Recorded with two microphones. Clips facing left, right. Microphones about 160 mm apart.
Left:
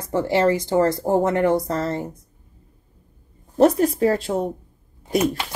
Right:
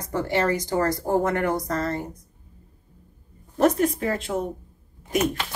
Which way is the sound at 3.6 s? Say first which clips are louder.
Left 4 dB; 35° left (ahead or behind).